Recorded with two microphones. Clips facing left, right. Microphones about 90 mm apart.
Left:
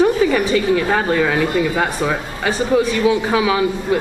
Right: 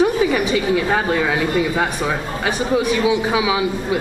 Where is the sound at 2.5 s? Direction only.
15° right (ahead or behind).